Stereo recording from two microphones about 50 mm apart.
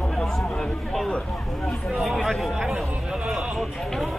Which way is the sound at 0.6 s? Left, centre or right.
Centre.